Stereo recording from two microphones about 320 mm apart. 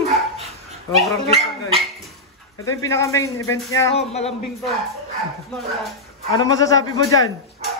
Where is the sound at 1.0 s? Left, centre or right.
Centre.